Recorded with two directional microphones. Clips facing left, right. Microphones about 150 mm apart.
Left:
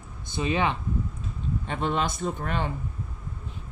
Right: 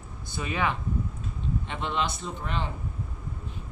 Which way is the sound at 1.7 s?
45° left (ahead or behind).